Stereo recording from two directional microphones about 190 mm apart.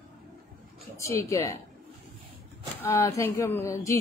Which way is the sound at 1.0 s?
15° left (ahead or behind).